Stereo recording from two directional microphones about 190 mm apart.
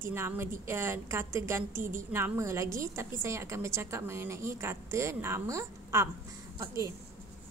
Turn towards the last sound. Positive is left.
turn(degrees=-15)  # may be behind; listen again after turning